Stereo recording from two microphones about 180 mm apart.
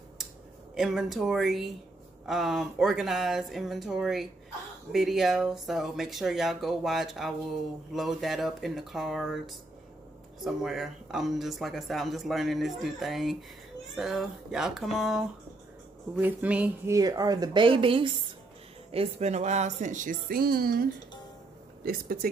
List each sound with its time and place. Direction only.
0.7 s a woman's voice: centre (ahead or behind); by 22.3 s 55° right (ahead or behind)